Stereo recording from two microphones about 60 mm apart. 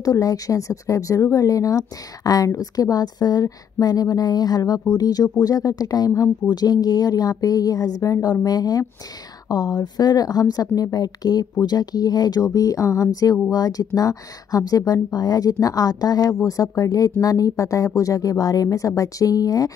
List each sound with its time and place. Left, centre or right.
0.0 s speech: left